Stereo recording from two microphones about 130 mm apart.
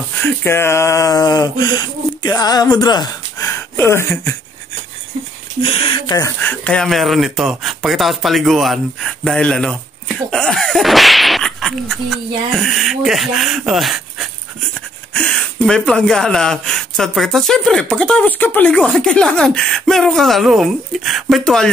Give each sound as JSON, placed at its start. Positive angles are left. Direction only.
{"t": 0.2, "sound": "speech", "side_deg": 15}
{"t": 5.6, "sound": "speech", "side_deg": 45}
{"t": 6.4, "sound": "speech", "side_deg": 10}